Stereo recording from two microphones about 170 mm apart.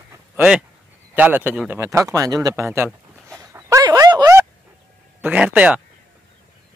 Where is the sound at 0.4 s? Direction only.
5° right (ahead or behind).